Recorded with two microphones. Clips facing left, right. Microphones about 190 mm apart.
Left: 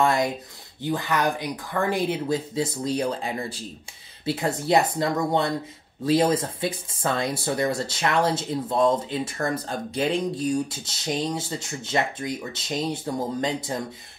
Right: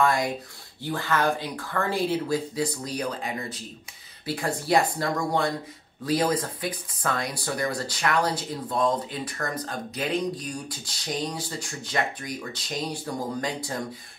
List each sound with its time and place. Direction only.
0.0 s speech: 25° left (ahead or behind)